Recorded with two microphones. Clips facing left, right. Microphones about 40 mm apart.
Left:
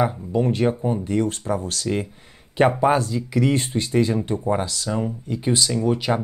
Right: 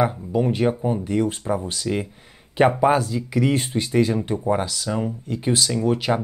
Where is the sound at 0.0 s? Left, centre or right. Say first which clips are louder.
Even; centre.